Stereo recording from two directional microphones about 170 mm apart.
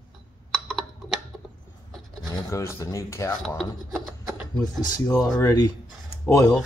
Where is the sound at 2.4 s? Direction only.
15° left (ahead or behind).